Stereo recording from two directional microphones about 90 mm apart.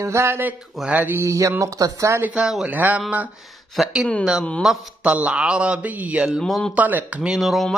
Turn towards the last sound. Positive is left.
turn(degrees=0)  # may be behind; listen again after turning